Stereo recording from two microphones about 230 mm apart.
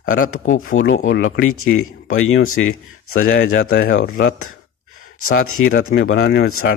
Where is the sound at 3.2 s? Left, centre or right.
Left.